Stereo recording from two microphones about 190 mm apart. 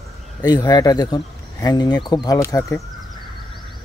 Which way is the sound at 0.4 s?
20° left (ahead or behind).